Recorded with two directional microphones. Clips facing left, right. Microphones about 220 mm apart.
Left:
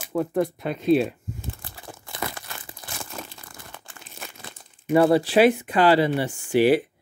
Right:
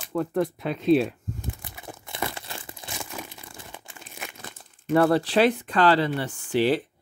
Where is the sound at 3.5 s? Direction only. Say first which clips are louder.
Right 1 dB; 25° right (ahead or behind).